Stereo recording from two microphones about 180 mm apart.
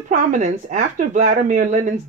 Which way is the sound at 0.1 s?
45° right (ahead or behind).